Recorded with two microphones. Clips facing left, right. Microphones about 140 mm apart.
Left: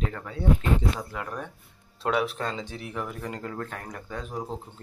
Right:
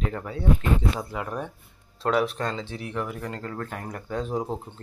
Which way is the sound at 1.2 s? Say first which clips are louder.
Right 3 dB; 20° right (ahead or behind).